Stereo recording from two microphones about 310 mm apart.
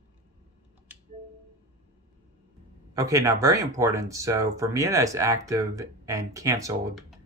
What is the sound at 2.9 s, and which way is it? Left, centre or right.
Speech, centre.